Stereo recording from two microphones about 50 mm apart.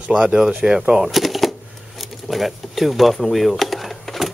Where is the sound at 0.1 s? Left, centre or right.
Centre.